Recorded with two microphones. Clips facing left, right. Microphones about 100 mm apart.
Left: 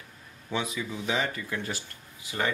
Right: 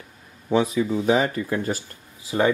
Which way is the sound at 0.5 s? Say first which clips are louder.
Right 11 dB; 40° right (ahead or behind).